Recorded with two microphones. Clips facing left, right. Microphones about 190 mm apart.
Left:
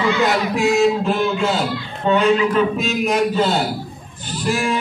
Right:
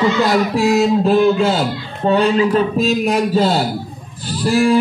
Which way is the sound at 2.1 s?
35° right (ahead or behind).